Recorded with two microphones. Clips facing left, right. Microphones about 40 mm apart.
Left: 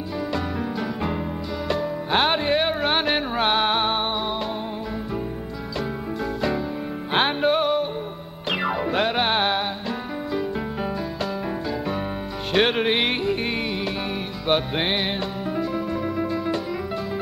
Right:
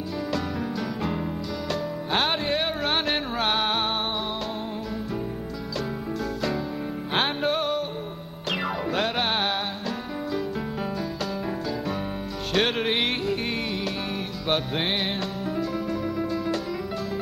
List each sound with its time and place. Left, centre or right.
0.3 s music: centre
7.2 s music: centre
12.5 s music: centre
14.5 s music: centre